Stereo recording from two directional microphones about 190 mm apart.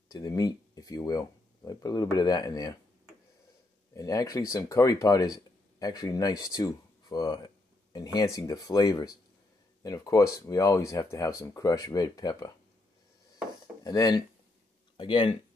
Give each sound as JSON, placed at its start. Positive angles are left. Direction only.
{"t": 0.1, "sound": "speech", "side_deg": 20}
{"t": 3.9, "sound": "speech", "side_deg": 20}
{"t": 13.8, "sound": "speech", "side_deg": 20}